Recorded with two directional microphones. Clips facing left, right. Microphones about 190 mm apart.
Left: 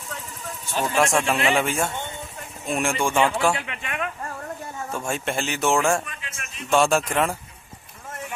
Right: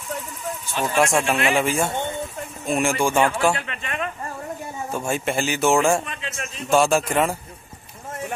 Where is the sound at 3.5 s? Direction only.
15° left (ahead or behind).